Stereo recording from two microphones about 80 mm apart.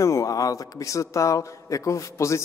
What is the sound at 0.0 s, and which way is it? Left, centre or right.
A man's voice, left.